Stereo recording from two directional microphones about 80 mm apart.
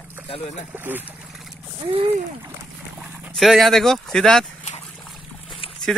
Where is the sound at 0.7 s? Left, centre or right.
Right.